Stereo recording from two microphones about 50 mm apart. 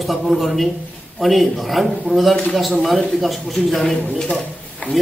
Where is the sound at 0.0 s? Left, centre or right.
Centre.